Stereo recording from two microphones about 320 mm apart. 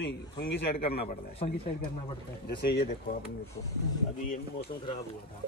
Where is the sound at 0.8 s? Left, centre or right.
Centre.